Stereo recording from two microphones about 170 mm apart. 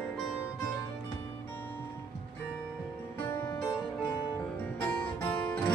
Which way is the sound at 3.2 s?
15° left (ahead or behind).